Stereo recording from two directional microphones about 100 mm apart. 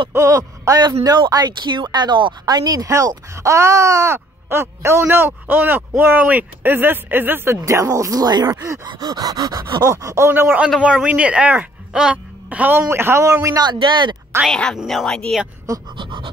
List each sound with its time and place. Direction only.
0.1 s speech: 30° right (ahead or behind)
8.5 s speech: 25° right (ahead or behind)
8.8 s speech: 45° right (ahead or behind)
13.7 s speech: 50° right (ahead or behind)
14.4 s speech: 5° left (ahead or behind)
16.0 s pant: 55° right (ahead or behind)